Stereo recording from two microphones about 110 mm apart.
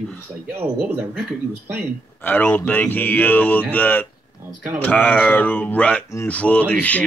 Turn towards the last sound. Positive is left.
turn(degrees=15)  # may be behind; listen again after turning